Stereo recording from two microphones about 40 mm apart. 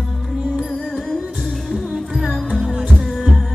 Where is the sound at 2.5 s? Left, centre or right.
Centre.